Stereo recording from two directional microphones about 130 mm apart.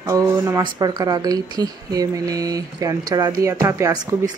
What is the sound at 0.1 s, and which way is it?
Speech, 25° right (ahead or behind).